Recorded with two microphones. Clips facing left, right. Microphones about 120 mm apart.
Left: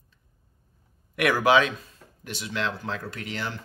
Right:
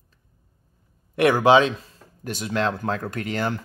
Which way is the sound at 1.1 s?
25° right (ahead or behind).